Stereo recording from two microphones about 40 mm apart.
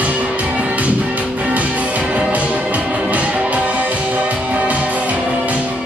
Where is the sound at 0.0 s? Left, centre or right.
Right.